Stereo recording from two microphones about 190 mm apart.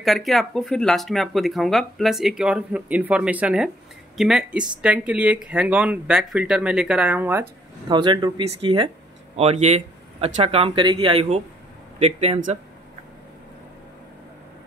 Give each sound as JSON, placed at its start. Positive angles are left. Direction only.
{"t": 0.0, "sound": "speech", "side_deg": 0}
{"t": 7.9, "sound": "speech", "side_deg": -25}